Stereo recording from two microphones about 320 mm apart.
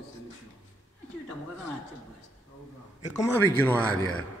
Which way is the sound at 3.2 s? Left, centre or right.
Centre.